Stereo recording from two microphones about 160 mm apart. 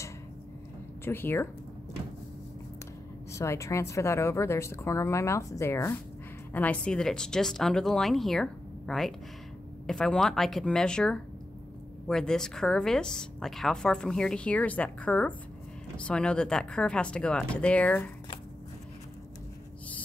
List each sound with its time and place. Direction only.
1.0 s speech: 15° left (ahead or behind)
3.3 s speech: 20° left (ahead or behind)